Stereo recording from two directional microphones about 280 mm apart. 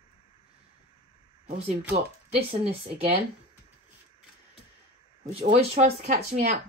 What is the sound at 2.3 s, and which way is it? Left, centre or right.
Speech, right.